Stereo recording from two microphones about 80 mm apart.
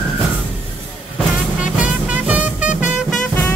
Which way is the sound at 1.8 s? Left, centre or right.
Centre.